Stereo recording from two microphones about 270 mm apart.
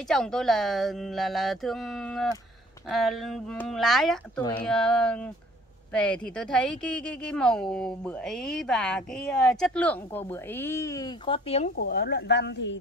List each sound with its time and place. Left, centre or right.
0.1 s a woman's voice: centre; by 11.7 s left
11.7 s speech: left